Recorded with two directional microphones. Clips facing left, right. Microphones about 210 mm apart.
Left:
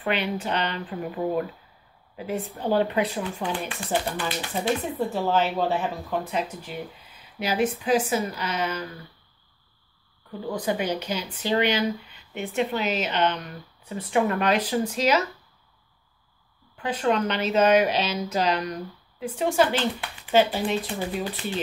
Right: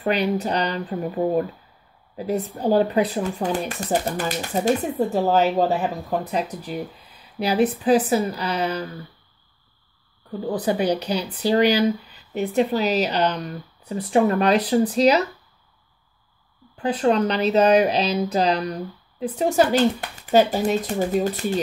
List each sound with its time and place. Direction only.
0.0 s speech: 40° right (ahead or behind)
10.6 s speech: 35° right (ahead or behind)
16.7 s speech: 35° right (ahead or behind)